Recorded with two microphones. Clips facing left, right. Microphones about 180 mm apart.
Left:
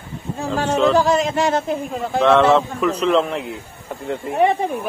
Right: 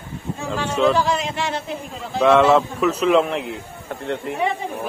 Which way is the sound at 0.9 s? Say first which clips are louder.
Left 5 dB; 45° left (ahead or behind).